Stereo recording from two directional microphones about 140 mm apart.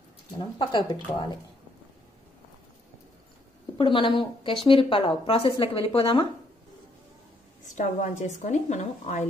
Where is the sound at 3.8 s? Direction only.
35° left (ahead or behind).